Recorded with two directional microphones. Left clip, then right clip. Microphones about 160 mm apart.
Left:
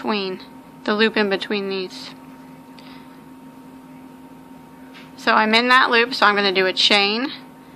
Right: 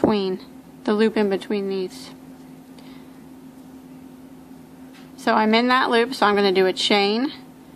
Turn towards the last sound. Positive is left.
turn(degrees=-35)  # may be behind; listen again after turning